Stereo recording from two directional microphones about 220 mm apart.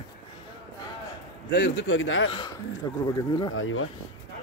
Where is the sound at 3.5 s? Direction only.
65° left (ahead or behind).